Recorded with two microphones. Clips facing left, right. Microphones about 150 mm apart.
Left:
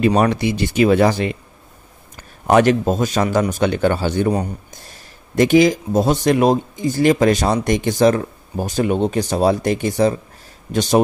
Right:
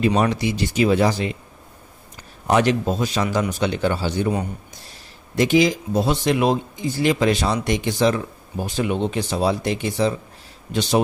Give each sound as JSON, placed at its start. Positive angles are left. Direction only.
{"t": 0.0, "sound": "speech", "side_deg": 55}
{"t": 2.4, "sound": "speech", "side_deg": 55}